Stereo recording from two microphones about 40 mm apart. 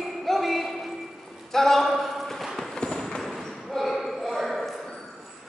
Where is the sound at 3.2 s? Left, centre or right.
Centre.